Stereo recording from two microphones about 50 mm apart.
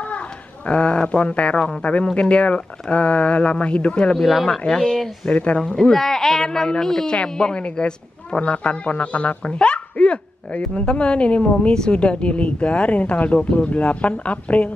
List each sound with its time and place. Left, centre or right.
0.0 s a sound: left
1.8 s speech: left
4.2 s speech: centre
4.5 s speech: centre
5.3 s speech: left
5.7 s speech: centre; by 14.7 s left